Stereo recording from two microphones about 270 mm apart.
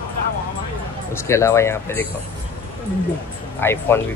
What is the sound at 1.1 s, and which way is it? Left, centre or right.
Speech, centre.